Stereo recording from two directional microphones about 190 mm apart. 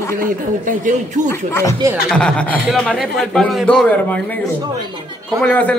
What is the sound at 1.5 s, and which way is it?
A man's voice, 15° left (ahead or behind).